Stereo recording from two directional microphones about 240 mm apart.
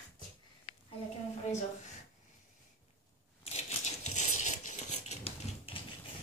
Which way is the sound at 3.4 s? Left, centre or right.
Left.